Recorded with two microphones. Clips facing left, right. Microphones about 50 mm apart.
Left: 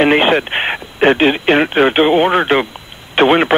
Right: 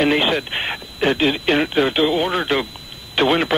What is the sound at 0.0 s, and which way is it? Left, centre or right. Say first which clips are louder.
Speech: left 6 dB; left.